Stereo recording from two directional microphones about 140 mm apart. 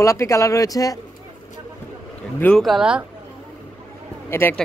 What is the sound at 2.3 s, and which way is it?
Speech, 10° left (ahead or behind).